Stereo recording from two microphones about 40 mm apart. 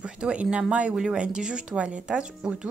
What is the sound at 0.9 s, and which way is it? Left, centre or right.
A woman's voice, centre.